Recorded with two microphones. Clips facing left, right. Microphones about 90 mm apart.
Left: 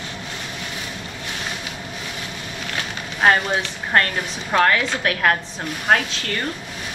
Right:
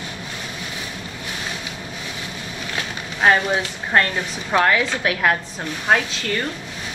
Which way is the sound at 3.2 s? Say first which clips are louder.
Even; 20° right (ahead or behind).